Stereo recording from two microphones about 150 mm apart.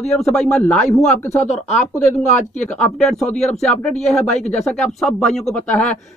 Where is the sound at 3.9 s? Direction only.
50° left (ahead or behind).